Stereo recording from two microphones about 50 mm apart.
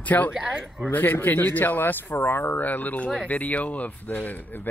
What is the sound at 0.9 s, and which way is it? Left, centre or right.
Speech, left.